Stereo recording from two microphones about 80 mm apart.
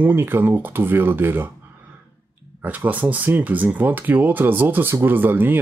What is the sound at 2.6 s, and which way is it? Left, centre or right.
Speech, right.